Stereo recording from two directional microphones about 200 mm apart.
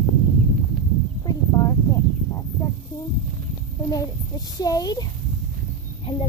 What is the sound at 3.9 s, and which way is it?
A child's voice, 20° left (ahead or behind).